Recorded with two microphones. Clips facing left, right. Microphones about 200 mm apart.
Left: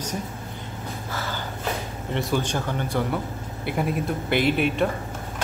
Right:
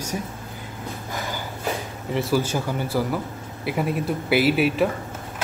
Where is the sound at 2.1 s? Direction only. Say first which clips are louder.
Right 3 dB; 5° right (ahead or behind).